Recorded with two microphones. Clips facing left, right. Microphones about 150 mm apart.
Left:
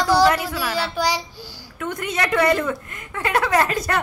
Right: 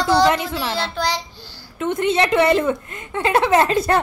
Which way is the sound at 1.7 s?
25° right (ahead or behind).